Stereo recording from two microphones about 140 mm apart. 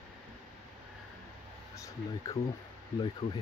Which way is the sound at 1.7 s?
25° left (ahead or behind).